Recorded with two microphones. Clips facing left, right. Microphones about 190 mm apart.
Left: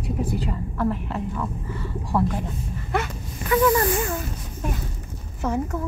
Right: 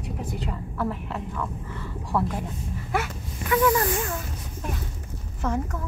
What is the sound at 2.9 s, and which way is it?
Snake, 5° right (ahead or behind).